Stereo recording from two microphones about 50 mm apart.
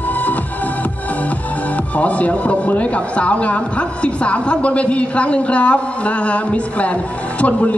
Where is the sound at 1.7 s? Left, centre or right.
Left.